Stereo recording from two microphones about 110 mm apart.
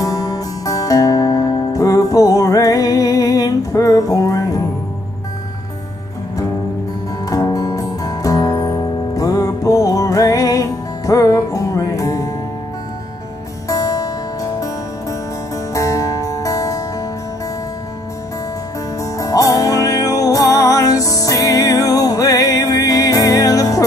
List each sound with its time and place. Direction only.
0.0 s music: 30° left (ahead or behind)
7.2 s music: 35° left (ahead or behind)
13.7 s music: 30° left (ahead or behind)
18.9 s music: 30° left (ahead or behind)